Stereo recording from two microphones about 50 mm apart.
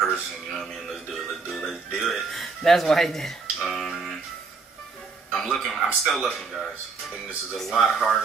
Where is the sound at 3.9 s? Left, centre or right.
Centre.